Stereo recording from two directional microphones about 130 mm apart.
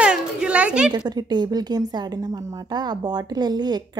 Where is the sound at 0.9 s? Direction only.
35° right (ahead or behind).